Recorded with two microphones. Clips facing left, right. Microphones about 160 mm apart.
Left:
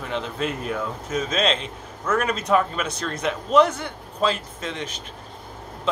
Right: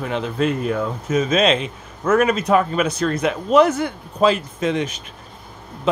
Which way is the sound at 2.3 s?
60° right (ahead or behind).